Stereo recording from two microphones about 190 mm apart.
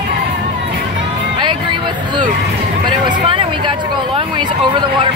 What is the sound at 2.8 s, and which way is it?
Speech, 25° right (ahead or behind).